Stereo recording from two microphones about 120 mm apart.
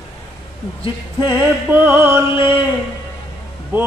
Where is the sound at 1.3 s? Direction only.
20° right (ahead or behind).